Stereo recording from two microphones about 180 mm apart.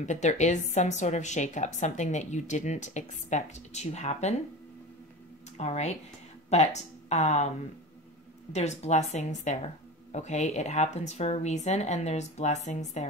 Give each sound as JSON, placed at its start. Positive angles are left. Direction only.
{"t": 0.0, "sound": "a woman's voice", "side_deg": 40}
{"t": 5.6, "sound": "a woman's voice", "side_deg": 40}
{"t": 8.5, "sound": "a woman's voice", "side_deg": 40}